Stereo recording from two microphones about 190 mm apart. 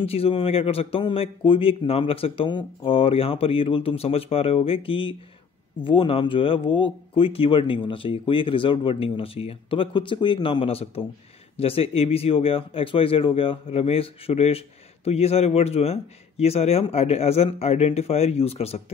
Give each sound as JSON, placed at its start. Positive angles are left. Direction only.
{"t": 0.0, "sound": "speech", "side_deg": 30}